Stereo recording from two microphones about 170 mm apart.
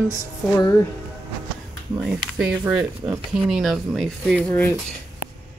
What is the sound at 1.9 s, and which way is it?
Speech, 5° right (ahead or behind).